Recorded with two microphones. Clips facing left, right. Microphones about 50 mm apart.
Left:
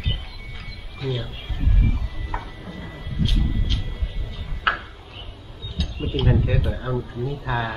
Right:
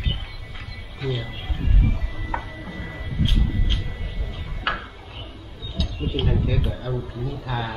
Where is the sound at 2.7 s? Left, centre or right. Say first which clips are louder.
Even; right.